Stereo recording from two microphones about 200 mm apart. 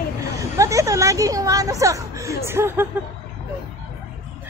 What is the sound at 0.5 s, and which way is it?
A woman's voice, 15° right (ahead or behind).